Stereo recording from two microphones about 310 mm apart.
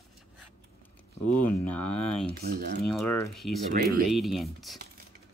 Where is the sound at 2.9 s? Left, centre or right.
Centre.